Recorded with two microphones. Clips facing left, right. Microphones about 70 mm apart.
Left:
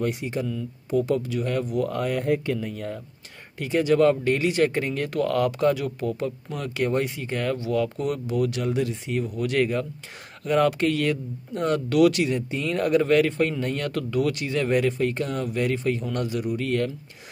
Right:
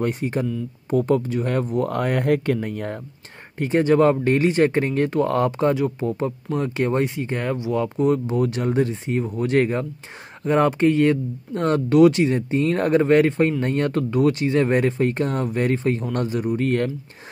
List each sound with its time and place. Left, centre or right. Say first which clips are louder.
0.0 s speech: right 4 dB; right
3.5 s speech: right 3 dB; right